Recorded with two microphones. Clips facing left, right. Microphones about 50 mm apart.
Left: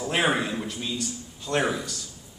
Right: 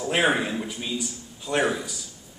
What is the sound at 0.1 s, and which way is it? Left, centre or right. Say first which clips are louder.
A man's voice: right 2 dB; centre.